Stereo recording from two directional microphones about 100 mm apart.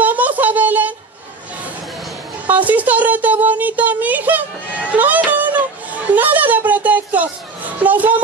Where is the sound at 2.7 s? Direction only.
15° right (ahead or behind).